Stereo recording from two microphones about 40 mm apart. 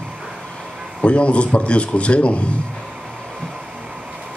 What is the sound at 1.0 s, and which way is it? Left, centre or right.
A man's voice, left.